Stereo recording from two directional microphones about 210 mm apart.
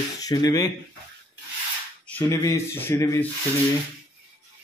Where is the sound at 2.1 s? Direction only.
15° left (ahead or behind).